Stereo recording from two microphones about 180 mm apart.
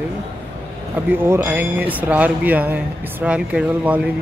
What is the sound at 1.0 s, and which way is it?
Speech, 10° right (ahead or behind).